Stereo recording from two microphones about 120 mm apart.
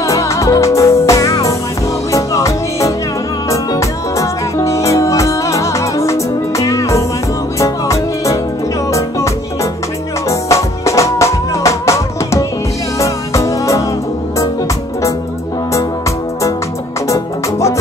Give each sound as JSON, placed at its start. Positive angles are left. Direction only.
{"t": 0.0, "sound": "music", "side_deg": 25}
{"t": 4.2, "sound": "music", "side_deg": 25}
{"t": 10.5, "sound": "music", "side_deg": 25}
{"t": 17.1, "sound": "music", "side_deg": 25}